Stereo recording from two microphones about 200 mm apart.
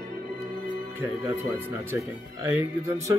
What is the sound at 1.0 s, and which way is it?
Speech, 15° right (ahead or behind).